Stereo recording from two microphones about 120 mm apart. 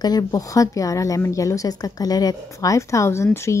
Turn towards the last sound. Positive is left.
turn(degrees=25)  # may be behind; listen again after turning